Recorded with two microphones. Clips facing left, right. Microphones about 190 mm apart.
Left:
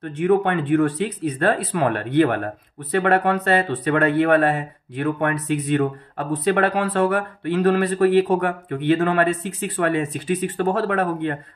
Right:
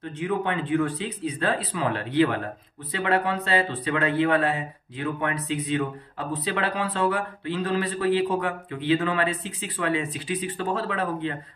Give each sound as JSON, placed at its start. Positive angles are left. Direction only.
{"t": 0.0, "sound": "speech", "side_deg": 60}